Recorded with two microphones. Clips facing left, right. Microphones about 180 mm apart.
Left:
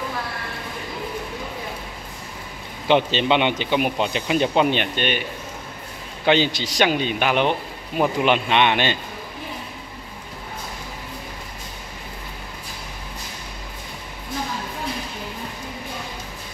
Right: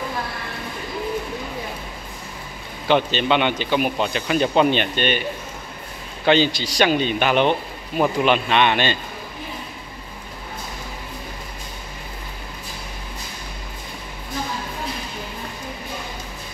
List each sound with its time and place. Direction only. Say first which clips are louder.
2.9 s speech: even; 25° left (ahead or behind)
6.2 s speech: right 1 dB; 15° left (ahead or behind)